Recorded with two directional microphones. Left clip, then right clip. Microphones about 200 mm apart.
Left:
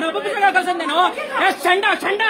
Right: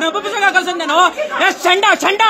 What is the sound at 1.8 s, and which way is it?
Speech, 40° right (ahead or behind).